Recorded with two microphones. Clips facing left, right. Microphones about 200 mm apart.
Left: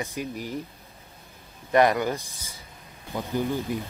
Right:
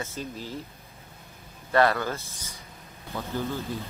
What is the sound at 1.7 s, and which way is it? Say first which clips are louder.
Speech: left 2 dB; 15° left (ahead or behind).